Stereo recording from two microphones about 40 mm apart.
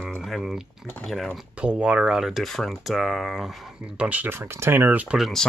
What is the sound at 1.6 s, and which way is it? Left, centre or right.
Speech, right.